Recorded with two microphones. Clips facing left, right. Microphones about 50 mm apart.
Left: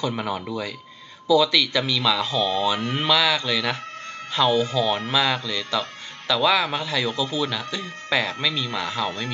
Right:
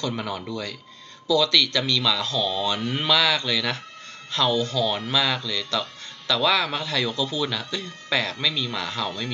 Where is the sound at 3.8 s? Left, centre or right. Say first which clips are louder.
Left 6 dB; left.